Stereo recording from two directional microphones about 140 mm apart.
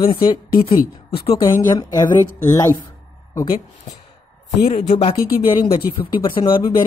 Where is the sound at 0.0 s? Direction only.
35° left (ahead or behind).